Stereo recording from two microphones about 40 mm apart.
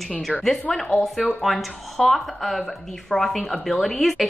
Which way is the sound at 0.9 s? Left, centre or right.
Centre.